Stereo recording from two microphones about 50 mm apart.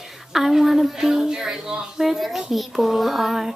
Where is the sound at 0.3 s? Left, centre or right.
Centre.